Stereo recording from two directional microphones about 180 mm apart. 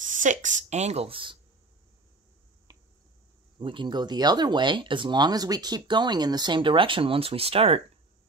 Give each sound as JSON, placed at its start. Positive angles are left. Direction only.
{"t": 0.0, "sound": "speech", "side_deg": -45}
{"t": 2.7, "sound": "finger snapping", "side_deg": -20}
{"t": 3.5, "sound": "speech", "side_deg": -25}